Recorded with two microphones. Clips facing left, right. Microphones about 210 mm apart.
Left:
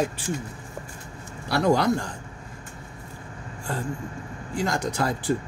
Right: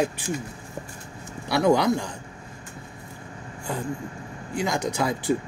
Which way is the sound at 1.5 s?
15° right (ahead or behind).